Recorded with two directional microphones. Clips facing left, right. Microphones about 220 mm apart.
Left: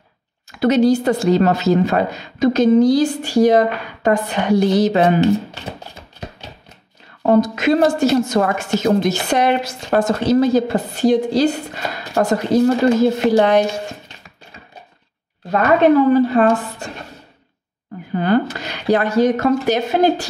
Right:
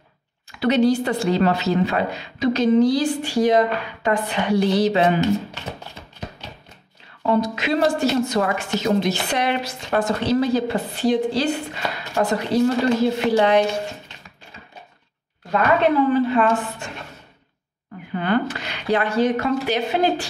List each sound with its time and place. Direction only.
0.5 s a woman's voice: 45° left (ahead or behind)
7.2 s a woman's voice: 45° left (ahead or behind)
16.1 s speech: 40° left (ahead or behind)
18.1 s speech: 35° left (ahead or behind)